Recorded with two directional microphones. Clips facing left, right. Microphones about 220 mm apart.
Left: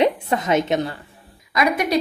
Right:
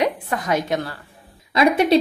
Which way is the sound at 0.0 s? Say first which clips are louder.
Left 3 dB; 25° left (ahead or behind).